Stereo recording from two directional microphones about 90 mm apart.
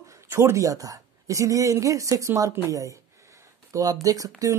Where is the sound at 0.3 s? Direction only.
35° right (ahead or behind).